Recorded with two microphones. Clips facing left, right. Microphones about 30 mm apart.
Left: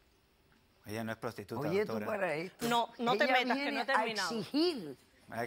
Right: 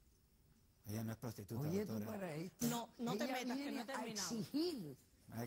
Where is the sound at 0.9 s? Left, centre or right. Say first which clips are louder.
Left 9 dB; left.